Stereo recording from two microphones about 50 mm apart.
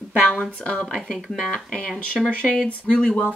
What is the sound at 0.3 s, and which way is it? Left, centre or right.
Speech, left.